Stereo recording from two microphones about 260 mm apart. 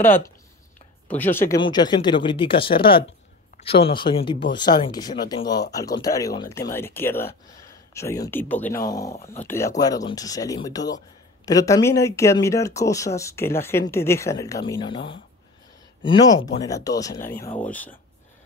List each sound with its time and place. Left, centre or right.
1.0 s speech: centre
17.3 s speech: left
17.6 s speech: centre